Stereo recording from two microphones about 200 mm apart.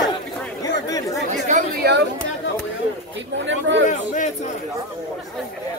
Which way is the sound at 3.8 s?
40° left (ahead or behind).